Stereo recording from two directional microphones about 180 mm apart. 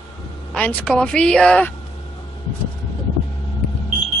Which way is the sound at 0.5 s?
5° left (ahead or behind).